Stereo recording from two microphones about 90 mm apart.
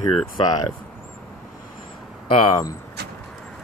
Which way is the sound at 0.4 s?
45° left (ahead or behind).